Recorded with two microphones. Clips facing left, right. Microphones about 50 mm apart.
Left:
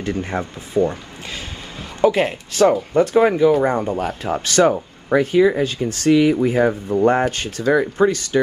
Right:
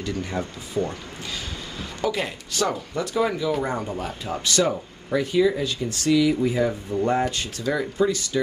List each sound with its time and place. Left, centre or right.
0.0 s speech: left